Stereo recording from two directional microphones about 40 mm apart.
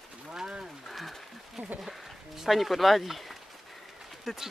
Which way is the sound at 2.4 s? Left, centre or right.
Centre.